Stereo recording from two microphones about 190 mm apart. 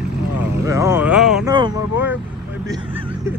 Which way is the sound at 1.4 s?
25° right (ahead or behind).